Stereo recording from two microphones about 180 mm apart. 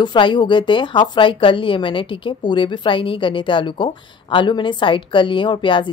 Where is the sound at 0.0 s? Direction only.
25° left (ahead or behind).